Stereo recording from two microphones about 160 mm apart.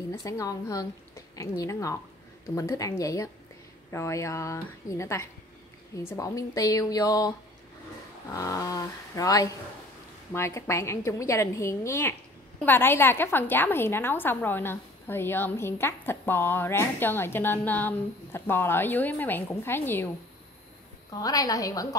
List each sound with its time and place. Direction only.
0.1 s a woman's voice: 20° left (ahead or behind)
21.2 s a woman's voice: 25° left (ahead or behind)